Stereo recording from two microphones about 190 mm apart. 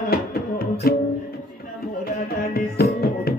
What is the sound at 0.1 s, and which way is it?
Music, 55° left (ahead or behind).